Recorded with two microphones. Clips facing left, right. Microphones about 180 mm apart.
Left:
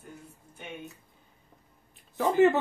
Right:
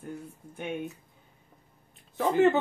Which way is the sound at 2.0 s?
Centre (ahead or behind).